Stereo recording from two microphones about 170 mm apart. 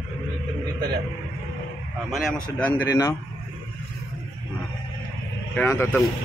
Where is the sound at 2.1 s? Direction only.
10° left (ahead or behind).